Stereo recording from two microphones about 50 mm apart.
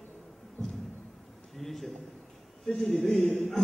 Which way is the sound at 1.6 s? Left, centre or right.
Centre.